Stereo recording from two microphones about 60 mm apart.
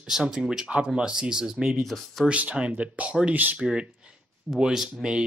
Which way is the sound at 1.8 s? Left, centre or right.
Centre.